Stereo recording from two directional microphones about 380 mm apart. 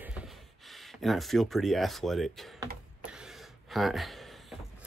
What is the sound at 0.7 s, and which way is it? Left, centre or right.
Speech, centre.